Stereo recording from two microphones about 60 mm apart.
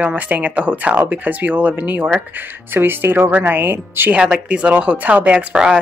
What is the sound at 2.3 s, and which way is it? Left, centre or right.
Speech, right.